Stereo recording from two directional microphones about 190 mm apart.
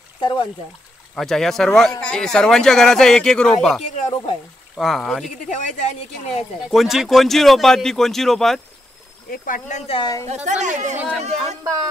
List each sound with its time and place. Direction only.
0.2 s speech: 25° left (ahead or behind)
1.1 s speech: centre (ahead or behind)
3.9 s speech: 35° left (ahead or behind)
4.7 s speech: centre (ahead or behind)
5.5 s speech: 40° left (ahead or behind)
6.7 s speech: centre (ahead or behind)
9.3 s speech: 45° left (ahead or behind); by 10.2 s 25° left (ahead or behind)
10.2 s speech: 35° right (ahead or behind)
11.6 s speech: 20° right (ahead or behind)